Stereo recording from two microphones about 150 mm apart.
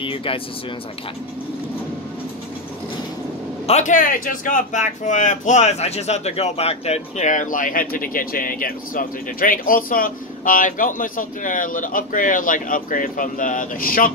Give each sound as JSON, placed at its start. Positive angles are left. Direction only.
{"t": 0.0, "sound": "speech", "side_deg": 35}
{"t": 3.6, "sound": "speech", "side_deg": 50}